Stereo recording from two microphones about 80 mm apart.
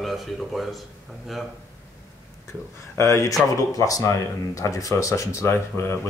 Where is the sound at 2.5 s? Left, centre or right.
Left.